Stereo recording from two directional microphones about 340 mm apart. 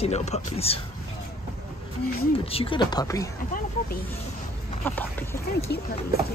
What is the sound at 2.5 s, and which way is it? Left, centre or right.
Speech, centre.